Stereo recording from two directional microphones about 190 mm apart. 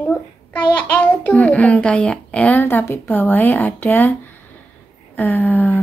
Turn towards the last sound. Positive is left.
turn(degrees=10)  # may be behind; listen again after turning